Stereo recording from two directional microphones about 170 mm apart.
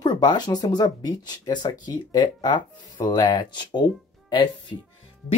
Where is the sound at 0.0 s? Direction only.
25° left (ahead or behind).